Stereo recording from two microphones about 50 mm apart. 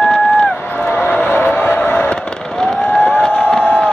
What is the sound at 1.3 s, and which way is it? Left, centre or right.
Music, left.